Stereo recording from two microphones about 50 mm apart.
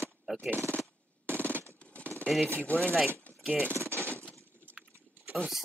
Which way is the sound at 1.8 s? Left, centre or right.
Left.